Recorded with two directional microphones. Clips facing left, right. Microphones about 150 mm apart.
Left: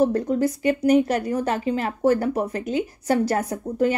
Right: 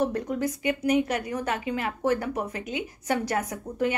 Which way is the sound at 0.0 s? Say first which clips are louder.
Left 6 dB; 35° left (ahead or behind).